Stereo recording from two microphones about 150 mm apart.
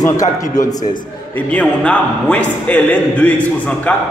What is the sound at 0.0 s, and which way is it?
Speech, 20° left (ahead or behind).